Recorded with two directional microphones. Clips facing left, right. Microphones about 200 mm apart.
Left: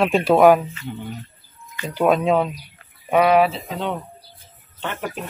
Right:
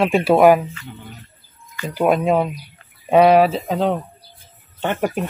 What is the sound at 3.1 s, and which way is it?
Speech, 35° right (ahead or behind).